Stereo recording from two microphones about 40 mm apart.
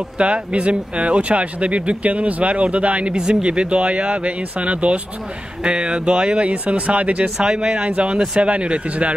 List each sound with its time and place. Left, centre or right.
0.2 s speech: right
7.3 s speech: centre